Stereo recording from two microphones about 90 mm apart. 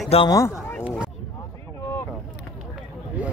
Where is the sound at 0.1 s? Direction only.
90° left.